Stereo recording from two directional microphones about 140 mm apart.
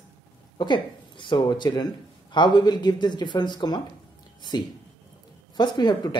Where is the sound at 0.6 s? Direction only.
35° left (ahead or behind).